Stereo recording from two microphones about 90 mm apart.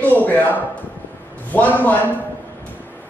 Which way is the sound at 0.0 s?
20° left (ahead or behind).